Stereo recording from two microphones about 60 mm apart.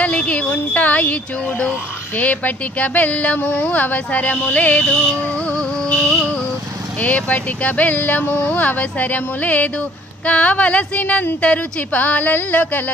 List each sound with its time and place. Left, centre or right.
0.0 s speech: left
5.5 s music: left
7.0 s speech: left